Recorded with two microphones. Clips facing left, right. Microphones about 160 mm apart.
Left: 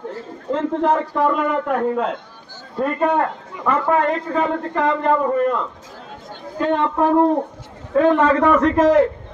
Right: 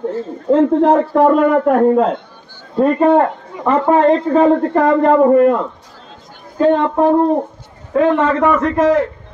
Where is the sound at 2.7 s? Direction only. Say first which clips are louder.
Right 8 dB; 30° right (ahead or behind); by 5.6 s 50° right (ahead or behind).